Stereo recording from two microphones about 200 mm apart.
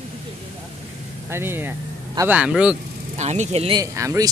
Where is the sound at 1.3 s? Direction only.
10° right (ahead or behind).